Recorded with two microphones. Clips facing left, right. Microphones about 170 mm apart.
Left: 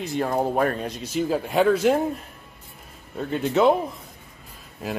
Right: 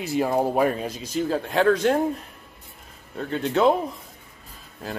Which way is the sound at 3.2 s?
5° left (ahead or behind).